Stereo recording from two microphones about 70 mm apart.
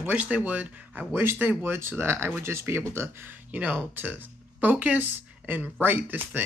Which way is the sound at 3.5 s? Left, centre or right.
Right.